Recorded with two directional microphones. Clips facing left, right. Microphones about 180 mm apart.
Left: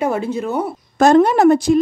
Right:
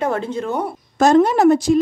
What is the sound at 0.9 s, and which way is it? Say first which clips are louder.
Speech: left 2 dB; 60° left (ahead or behind).